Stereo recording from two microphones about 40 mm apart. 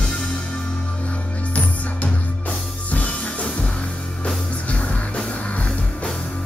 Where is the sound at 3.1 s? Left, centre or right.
Left.